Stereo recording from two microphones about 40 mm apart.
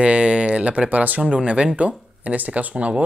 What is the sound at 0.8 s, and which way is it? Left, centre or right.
Speech, right.